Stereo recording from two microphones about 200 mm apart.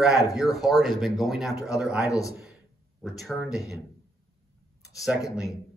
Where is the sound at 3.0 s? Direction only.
Centre (ahead or behind).